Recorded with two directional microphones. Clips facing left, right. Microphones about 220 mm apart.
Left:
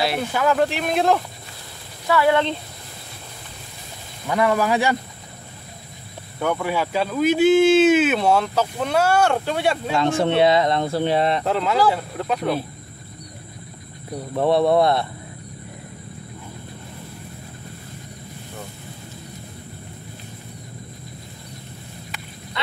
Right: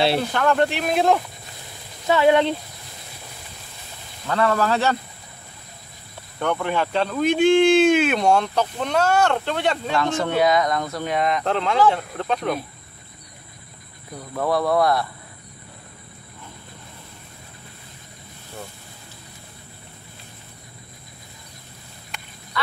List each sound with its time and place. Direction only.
0.2 s speech: 5° left (ahead or behind)
2.0 s speech: 20° right (ahead or behind)
4.3 s speech: 15° left (ahead or behind)
6.4 s speech: 10° left (ahead or behind)
9.9 s speech: 25° left (ahead or behind)
11.4 s speech: 5° left (ahead or behind)
14.1 s speech: 25° left (ahead or behind)